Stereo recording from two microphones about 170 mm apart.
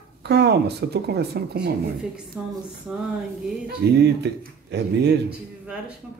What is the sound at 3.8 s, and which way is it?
Speech, 70° right (ahead or behind).